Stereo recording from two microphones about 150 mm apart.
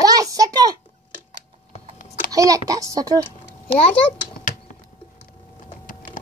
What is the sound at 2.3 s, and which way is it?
Speech, 25° right (ahead or behind).